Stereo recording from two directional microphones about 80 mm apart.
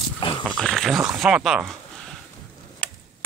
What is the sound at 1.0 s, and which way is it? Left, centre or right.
Speech, centre.